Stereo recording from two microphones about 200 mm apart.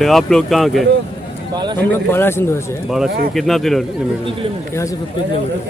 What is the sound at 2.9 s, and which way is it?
Speech, centre (ahead or behind).